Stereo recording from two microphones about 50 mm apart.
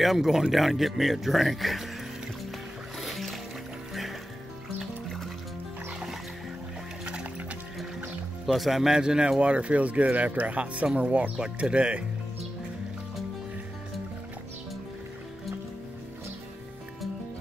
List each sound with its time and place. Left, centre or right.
0.0 s speech: centre
3.0 s music: centre
7.1 s music: right
8.5 s speech: centre; by 12.0 s right